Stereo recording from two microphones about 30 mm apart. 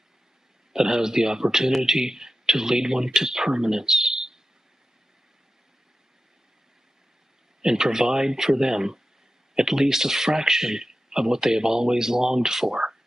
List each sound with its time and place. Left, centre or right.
0.7 s speech: centre
7.6 s speech: centre